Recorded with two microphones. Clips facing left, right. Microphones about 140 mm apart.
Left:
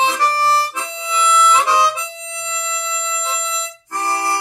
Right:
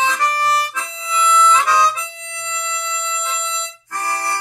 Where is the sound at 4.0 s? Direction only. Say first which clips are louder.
Left 3 dB; 25° left (ahead or behind).